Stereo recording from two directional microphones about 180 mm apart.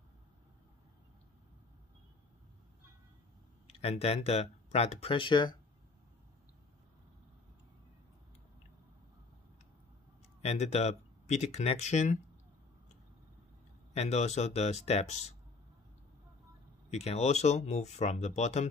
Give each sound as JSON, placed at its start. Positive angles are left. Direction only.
{"t": 3.6, "sound": "speech", "side_deg": 35}
{"t": 10.4, "sound": "speech", "side_deg": 35}
{"t": 13.9, "sound": "speech", "side_deg": 40}
{"t": 16.9, "sound": "speech", "side_deg": 35}